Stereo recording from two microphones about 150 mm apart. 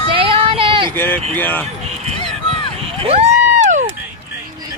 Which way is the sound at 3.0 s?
45° right (ahead or behind).